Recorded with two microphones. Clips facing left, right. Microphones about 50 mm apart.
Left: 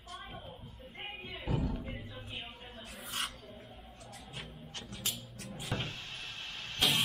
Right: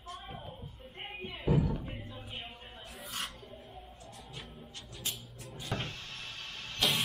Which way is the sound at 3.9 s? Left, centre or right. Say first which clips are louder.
Even; left.